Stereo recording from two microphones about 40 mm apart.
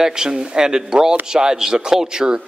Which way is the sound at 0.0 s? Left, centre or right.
Centre.